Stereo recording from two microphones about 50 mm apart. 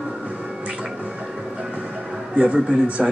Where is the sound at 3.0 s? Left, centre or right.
Centre.